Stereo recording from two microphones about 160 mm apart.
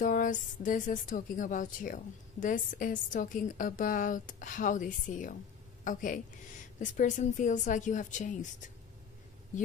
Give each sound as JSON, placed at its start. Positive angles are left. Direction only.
{"t": 0.0, "sound": "a woman's voice", "side_deg": 55}